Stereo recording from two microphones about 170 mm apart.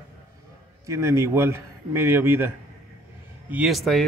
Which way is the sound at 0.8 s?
15° right (ahead or behind).